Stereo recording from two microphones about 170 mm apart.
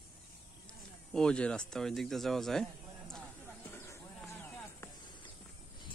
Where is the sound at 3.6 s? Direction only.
15° left (ahead or behind).